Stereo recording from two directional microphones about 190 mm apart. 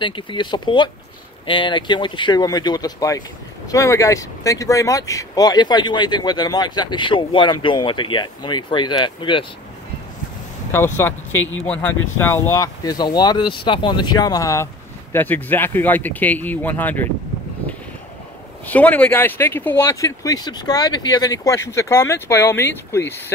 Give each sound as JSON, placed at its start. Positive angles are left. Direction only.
{"t": 0.0, "sound": "speech", "side_deg": 25}
{"t": 10.7, "sound": "speech", "side_deg": 10}
{"t": 18.7, "sound": "speech", "side_deg": 5}